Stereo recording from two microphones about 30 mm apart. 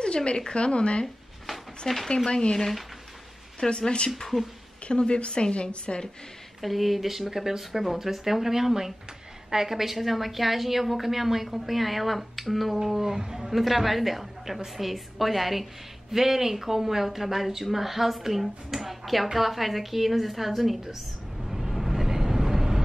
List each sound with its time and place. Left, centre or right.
0.0 s a woman's voice: left
1.8 s speech: centre
3.5 s a woman's voice: left
6.6 s a woman's voice: centre
12.7 s speech: centre
13.0 s speech: right
13.5 s a woman's voice: centre
21.5 s vehicle: centre